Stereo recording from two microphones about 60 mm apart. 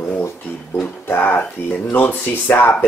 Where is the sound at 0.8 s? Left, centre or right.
Left.